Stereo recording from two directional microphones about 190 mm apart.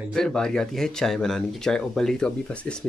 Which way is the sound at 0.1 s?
5° left (ahead or behind).